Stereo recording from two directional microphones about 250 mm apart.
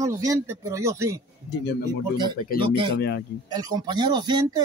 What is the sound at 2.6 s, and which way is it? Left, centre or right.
Speech, centre.